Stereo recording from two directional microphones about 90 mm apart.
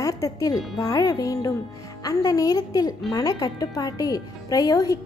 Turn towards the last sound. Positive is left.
turn(degrees=40)  # may be behind; listen again after turning